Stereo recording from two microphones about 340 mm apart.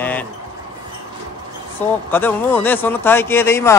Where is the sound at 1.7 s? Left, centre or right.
Centre.